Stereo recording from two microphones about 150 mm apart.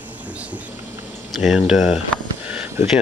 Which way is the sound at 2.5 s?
10° right (ahead or behind).